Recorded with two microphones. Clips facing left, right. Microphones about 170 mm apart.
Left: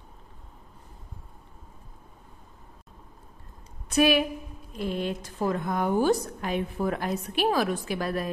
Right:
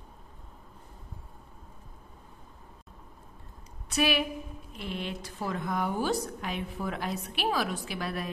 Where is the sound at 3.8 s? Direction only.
50° left (ahead or behind).